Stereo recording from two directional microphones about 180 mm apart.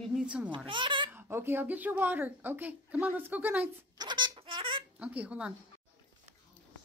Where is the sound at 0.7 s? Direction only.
25° right (ahead or behind).